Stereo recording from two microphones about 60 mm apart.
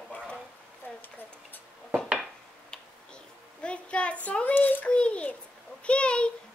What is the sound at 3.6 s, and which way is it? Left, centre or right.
Child singing, centre.